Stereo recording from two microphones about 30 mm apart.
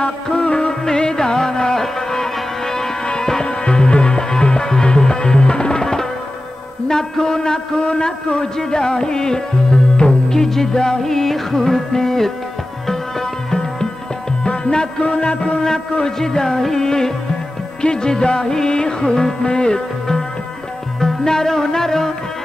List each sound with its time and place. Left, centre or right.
0.0 s music: left
3.4 s music: left
6.9 s a man's voice: left
11.0 s music: centre
14.6 s a man's voice: left
16.2 s a man's voice: centre
21.0 s music: centre